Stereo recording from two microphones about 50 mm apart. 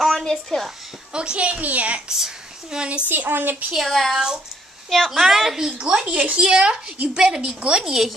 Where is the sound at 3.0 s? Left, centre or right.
Right.